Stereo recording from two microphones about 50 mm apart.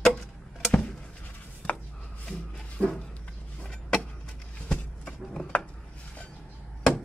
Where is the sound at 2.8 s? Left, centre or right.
Left.